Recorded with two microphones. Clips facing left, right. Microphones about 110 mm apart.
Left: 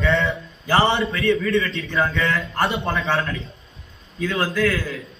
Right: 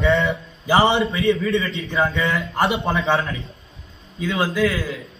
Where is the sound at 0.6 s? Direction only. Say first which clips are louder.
Right 2 dB; 15° right (ahead or behind).